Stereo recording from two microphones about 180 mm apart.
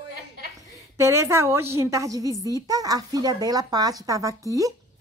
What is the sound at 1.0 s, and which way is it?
A woman's voice, 15° right (ahead or behind).